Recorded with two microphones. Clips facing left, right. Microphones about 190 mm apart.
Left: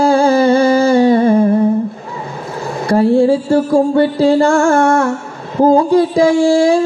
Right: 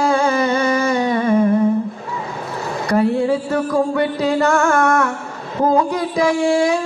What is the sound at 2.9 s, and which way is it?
Music, 30° left (ahead or behind).